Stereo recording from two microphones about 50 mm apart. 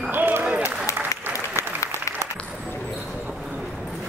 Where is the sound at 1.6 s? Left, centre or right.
Left.